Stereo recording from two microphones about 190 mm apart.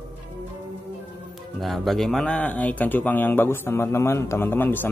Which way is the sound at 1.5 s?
Centre (ahead or behind).